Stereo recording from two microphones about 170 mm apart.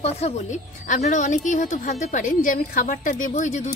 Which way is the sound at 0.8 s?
45° left (ahead or behind).